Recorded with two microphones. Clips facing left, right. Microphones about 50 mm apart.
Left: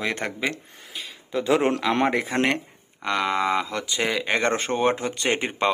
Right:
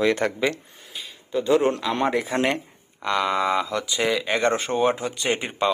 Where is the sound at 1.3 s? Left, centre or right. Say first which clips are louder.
Right 1 dB; left.